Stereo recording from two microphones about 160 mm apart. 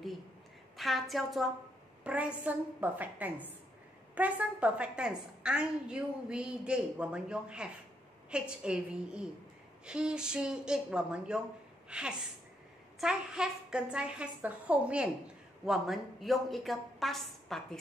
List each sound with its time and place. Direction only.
0.7 s a woman's voice: centre (ahead or behind)